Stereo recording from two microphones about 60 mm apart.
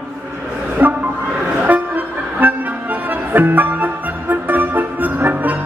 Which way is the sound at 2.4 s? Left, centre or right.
Right.